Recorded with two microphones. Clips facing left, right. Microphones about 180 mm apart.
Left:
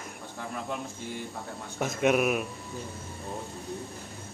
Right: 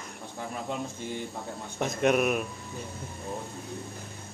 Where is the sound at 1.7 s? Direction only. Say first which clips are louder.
Even; centre (ahead or behind).